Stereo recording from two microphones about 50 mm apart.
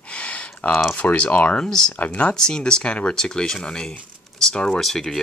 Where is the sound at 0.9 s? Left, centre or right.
Left.